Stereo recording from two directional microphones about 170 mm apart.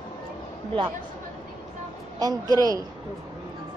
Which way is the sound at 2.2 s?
20° right (ahead or behind).